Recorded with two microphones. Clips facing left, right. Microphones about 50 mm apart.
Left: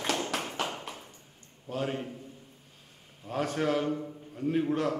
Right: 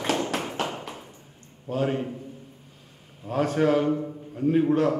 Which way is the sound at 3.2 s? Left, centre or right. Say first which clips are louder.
Right 7 dB; centre.